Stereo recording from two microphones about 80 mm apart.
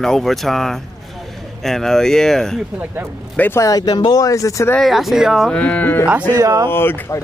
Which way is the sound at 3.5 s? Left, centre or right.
Left.